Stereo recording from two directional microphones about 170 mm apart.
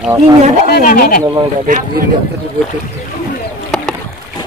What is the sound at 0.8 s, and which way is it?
Speech, 55° left (ahead or behind).